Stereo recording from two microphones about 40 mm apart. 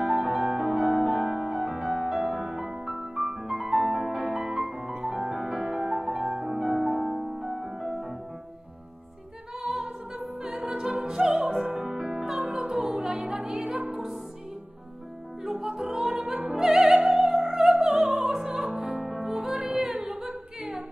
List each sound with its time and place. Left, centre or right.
0.0 s music: centre
10.4 s music: right
12.7 s music: right
13.0 s music: centre
15.4 s music: centre
16.1 s opera: right
16.5 s music: centre
17.9 s music: right
18.9 s music: centre